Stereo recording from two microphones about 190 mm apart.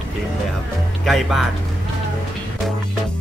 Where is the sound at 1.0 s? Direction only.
Centre (ahead or behind).